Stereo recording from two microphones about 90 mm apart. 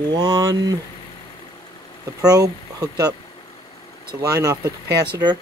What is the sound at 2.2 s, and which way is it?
Speech, 45° right (ahead or behind).